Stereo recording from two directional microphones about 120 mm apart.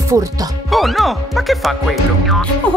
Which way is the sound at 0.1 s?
25° right (ahead or behind).